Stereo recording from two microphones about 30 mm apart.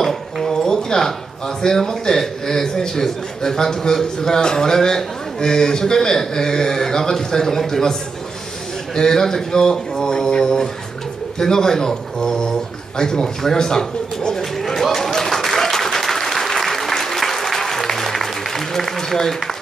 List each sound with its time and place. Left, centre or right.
0.0 s dishes: centre
1.6 s a man's voice: centre
8.9 s speech: centre
14.6 s a sound: centre
15.1 s applause: centre